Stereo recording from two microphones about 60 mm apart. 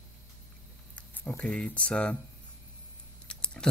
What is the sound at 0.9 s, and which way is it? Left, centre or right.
Speech, left.